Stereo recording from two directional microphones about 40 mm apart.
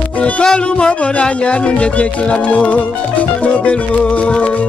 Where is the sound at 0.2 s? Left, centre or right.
Left.